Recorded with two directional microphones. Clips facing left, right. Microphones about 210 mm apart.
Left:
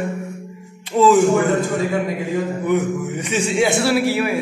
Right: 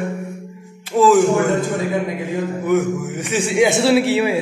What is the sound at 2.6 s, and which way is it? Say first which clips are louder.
A man's voice: right 4 dB; centre (ahead or behind).